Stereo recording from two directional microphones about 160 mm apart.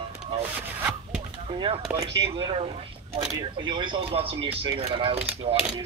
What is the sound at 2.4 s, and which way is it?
Speech, 35° right (ahead or behind).